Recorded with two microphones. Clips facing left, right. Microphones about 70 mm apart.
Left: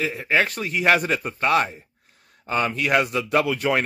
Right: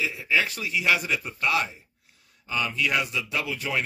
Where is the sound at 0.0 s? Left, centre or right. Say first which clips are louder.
Left 4 dB; left.